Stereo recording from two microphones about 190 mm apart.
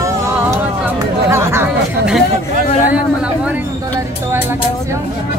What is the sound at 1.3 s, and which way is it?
Chatter, 15° right (ahead or behind).